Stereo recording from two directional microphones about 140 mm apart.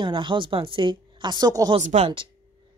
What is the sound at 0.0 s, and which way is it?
Speech, 35° right (ahead or behind).